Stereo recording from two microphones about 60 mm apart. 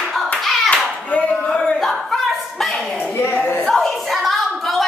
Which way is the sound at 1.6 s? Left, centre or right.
Centre.